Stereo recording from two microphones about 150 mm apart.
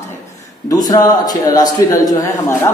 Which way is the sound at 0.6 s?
25° left (ahead or behind).